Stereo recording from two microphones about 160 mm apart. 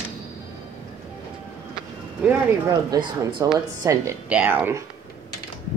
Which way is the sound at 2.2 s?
10° right (ahead or behind).